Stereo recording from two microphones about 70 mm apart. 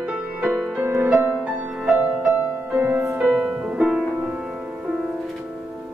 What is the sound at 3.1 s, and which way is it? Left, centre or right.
Music, centre.